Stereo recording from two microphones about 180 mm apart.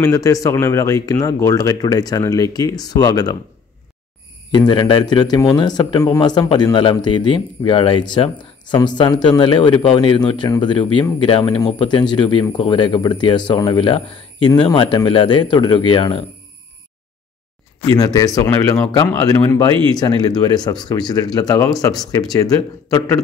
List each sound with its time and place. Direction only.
0.0 s a man's voice: 15° left (ahead or behind)
4.5 s a man's voice: 25° left (ahead or behind)
17.9 s a man's voice: 20° left (ahead or behind)